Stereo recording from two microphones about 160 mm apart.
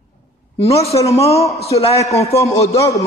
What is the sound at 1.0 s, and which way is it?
Speech, 40° left (ahead or behind).